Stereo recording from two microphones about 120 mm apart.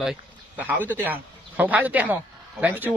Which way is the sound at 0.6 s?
15° right (ahead or behind).